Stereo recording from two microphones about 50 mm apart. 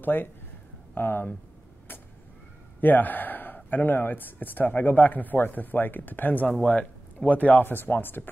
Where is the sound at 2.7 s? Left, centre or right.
Left.